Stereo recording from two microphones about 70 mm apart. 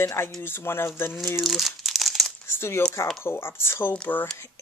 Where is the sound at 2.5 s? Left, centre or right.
Left.